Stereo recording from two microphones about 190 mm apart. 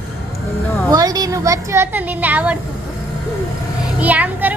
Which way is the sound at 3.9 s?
10° right (ahead or behind).